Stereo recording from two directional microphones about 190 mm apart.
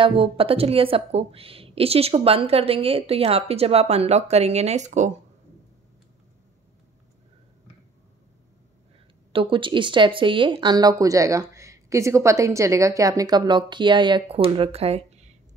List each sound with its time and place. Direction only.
0.0 s a woman's voice: 30° right (ahead or behind)
9.3 s speech: 25° right (ahead or behind)